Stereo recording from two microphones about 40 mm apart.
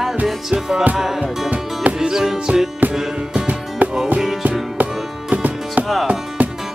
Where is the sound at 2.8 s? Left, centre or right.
Right.